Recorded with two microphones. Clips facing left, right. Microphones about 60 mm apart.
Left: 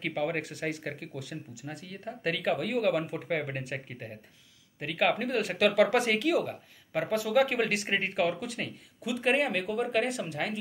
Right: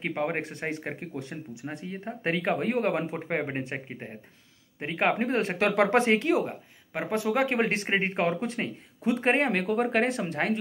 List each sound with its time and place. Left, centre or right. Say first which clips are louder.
0.0 s speech: right 2 dB; right